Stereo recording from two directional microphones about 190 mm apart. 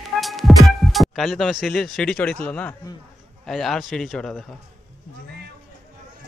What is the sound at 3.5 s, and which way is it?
Speech, centre (ahead or behind).